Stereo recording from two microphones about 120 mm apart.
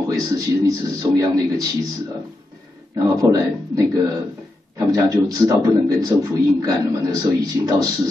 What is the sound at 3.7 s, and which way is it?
A man's voice, 30° right (ahead or behind).